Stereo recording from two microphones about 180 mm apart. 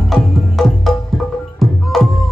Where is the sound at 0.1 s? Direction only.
Centre (ahead or behind).